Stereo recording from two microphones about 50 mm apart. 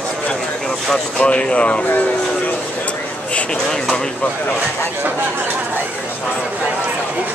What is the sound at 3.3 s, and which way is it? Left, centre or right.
Speech, left.